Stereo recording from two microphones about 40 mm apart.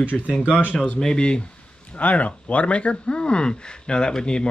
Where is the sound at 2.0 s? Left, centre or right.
Left.